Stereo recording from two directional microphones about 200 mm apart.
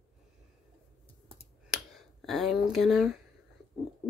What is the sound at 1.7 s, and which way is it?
Speech, centre (ahead or behind).